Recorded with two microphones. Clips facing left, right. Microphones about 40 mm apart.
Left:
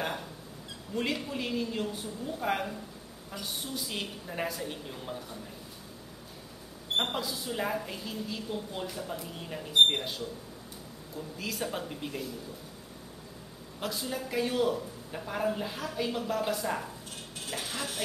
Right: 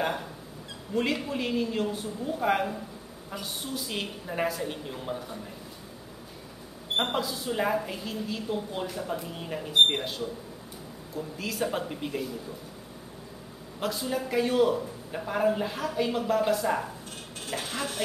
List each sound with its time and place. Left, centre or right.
0.0 s a sound: centre
0.9 s a woman's voice: centre
7.0 s a woman's voice: centre
13.7 s a woman's voice: centre